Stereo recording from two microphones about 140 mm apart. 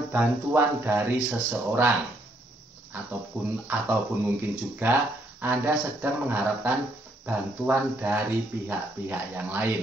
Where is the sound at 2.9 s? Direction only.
15° right (ahead or behind).